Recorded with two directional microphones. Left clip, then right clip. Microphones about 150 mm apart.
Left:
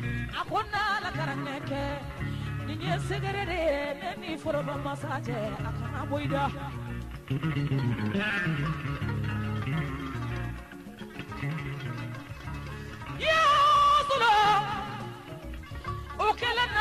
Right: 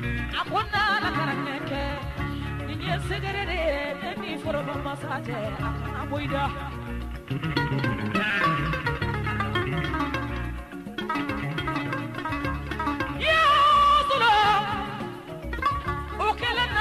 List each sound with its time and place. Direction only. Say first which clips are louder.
0.4 s music: right 4 dB; 35° left (ahead or behind)
13.2 s music: right 3 dB; 40° left (ahead or behind)
16.2 s music: right 1 dB; 45° left (ahead or behind)